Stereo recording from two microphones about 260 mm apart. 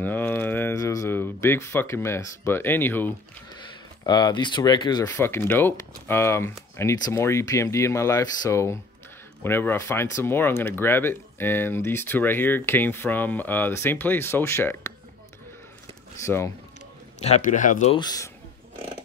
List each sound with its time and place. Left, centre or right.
0.0 s speech: centre
16.3 s speech: centre
17.2 s speech: left
17.9 s speech: centre